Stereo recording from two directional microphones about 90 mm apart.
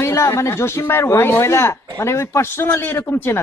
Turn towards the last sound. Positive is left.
turn(degrees=25)  # may be behind; listen again after turning